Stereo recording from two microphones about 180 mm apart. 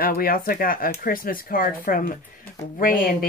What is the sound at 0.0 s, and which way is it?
Speech, 55° left (ahead or behind).